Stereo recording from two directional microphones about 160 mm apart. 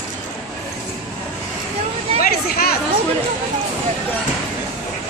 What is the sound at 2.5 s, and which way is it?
Chatter, 75° left (ahead or behind).